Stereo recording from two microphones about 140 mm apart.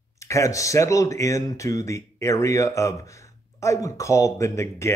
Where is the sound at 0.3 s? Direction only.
20° left (ahead or behind).